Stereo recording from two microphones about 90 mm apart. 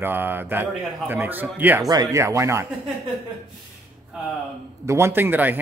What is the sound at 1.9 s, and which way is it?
Speech, 45° right (ahead or behind).